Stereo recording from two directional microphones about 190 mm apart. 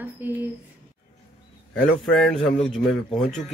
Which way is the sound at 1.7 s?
Centre (ahead or behind).